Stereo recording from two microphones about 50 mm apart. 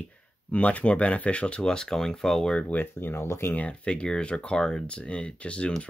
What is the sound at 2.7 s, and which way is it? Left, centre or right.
Speech, left.